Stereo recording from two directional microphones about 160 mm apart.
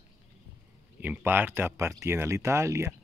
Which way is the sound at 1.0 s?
10° right (ahead or behind).